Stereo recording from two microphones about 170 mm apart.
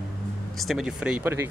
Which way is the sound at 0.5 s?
Centre (ahead or behind).